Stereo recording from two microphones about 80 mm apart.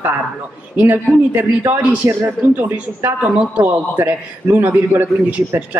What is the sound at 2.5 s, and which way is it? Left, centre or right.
A man's voice, centre.